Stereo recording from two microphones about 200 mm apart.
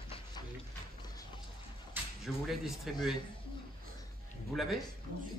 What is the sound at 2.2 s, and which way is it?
Speech, centre (ahead or behind).